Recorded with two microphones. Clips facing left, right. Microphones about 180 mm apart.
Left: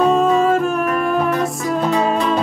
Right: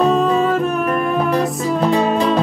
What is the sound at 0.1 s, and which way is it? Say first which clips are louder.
Music: left 1 dB; centre (ahead or behind).